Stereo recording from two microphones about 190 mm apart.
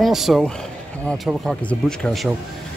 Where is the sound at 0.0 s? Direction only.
Centre (ahead or behind).